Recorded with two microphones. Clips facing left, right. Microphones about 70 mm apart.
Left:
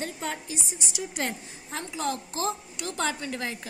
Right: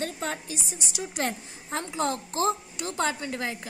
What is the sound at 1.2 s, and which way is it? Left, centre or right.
A woman's voice, right.